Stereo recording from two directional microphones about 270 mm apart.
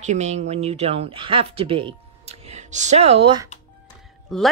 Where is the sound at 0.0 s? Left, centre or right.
Right.